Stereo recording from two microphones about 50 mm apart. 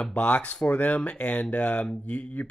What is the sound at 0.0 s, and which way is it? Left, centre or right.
Speech, left.